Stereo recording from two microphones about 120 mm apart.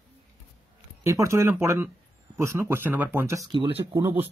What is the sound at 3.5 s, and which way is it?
Speech, 40° right (ahead or behind).